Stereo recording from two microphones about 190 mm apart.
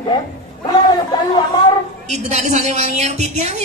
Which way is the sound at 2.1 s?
35° right (ahead or behind).